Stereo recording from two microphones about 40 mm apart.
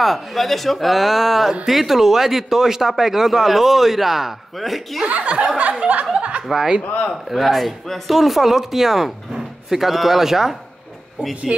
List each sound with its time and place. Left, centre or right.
0.0 s a man's voice: centre
5.0 s speech: right
6.1 s chuckle: right
6.5 s a man's voice: centre
6.8 s speech: left
7.2 s a man's voice: centre